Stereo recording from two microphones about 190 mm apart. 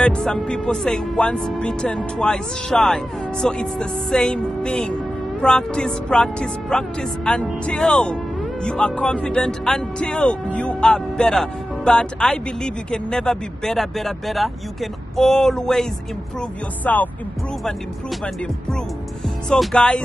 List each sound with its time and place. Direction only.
0.0 s speech: 5° left (ahead or behind)
19.2 s speech: centre (ahead or behind)